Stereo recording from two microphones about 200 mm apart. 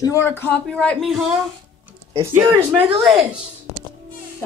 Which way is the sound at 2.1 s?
15° right (ahead or behind).